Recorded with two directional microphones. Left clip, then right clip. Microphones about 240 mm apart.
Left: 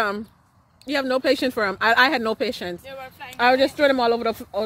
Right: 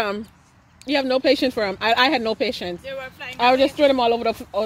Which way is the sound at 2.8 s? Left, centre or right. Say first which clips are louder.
Right 5 dB; left.